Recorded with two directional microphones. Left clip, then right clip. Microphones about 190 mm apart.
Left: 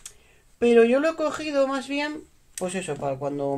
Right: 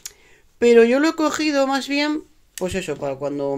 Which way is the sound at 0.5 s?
35° right (ahead or behind).